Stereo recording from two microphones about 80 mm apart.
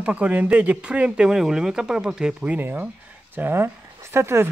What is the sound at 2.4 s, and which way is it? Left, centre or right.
Speech, right.